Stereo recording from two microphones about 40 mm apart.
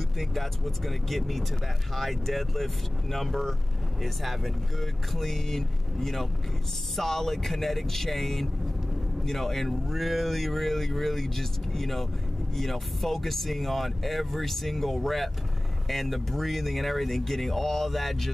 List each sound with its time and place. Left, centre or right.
0.2 s speech: centre